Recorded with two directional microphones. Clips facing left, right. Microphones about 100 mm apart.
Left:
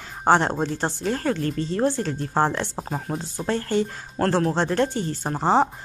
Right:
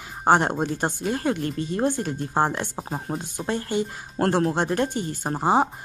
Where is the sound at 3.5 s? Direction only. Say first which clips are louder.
Left 2 dB; 15° right (ahead or behind).